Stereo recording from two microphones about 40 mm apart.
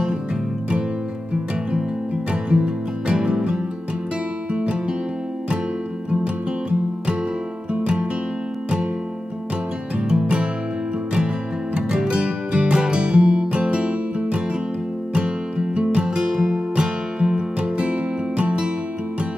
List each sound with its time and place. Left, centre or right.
2.5 s music: right
7.8 s music: right
10.0 s music: right
11.9 s music: right